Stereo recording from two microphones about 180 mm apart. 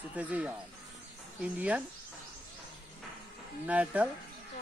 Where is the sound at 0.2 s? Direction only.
10° right (ahead or behind).